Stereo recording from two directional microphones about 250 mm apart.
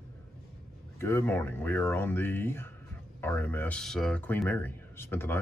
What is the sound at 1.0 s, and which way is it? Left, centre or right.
Speech, centre.